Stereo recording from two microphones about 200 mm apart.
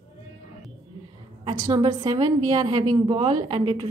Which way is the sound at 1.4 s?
20° right (ahead or behind).